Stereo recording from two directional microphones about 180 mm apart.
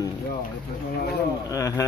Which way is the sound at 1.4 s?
20° left (ahead or behind).